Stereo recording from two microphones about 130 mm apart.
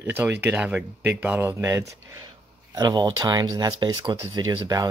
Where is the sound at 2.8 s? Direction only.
30° right (ahead or behind).